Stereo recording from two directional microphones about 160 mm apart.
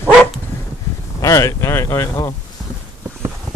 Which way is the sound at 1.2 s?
20° left (ahead or behind).